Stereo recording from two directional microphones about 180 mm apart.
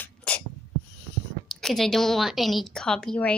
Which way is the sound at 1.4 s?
Centre (ahead or behind).